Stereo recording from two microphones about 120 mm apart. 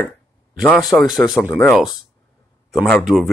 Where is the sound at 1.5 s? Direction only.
15° left (ahead or behind).